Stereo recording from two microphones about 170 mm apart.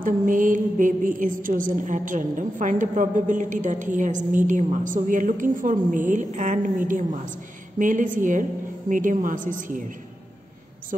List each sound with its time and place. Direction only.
0.0 s a woman's voice: 50° right (ahead or behind)